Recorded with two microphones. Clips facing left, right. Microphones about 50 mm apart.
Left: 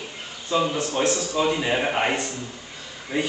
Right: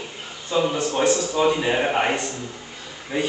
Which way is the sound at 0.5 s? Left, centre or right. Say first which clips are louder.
Right 1 dB; centre.